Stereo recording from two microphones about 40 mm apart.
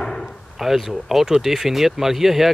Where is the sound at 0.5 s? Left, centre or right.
Centre.